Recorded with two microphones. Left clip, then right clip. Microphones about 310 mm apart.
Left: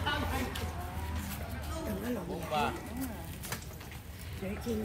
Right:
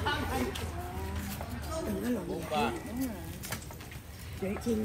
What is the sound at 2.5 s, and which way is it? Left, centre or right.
Speech, centre.